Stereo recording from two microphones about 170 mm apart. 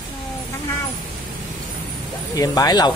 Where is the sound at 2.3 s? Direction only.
20° left (ahead or behind).